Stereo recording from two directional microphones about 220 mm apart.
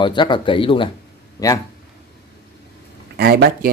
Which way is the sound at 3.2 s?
45° right (ahead or behind).